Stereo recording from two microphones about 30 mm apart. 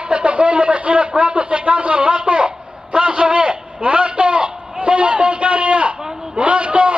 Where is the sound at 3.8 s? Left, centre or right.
Right.